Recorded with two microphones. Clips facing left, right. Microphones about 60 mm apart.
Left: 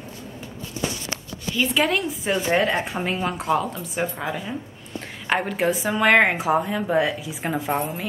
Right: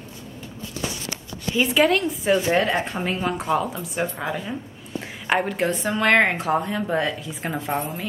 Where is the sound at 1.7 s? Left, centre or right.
Centre.